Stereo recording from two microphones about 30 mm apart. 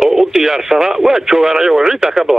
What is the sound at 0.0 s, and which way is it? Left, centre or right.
Speech, centre.